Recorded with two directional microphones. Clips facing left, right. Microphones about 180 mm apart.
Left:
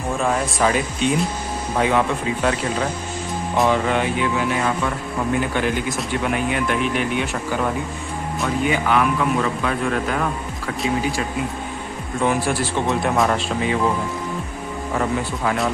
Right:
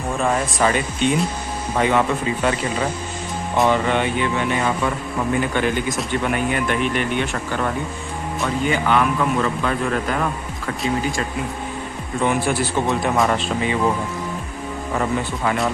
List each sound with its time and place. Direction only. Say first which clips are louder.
0.2 s speech: right 1 dB; centre (ahead or behind)
12.2 s speech: even; centre (ahead or behind)
15.0 s speech: even; centre (ahead or behind)